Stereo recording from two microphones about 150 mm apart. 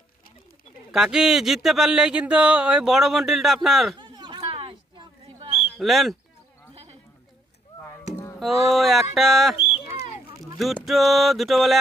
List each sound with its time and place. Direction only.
0.9 s speech: 5° right (ahead or behind)
4.0 s a sound: 30° right (ahead or behind)
5.8 s speech: centre (ahead or behind)
7.8 s a sound: 15° left (ahead or behind)
8.6 s speech: centre (ahead or behind)
10.6 s speech: centre (ahead or behind)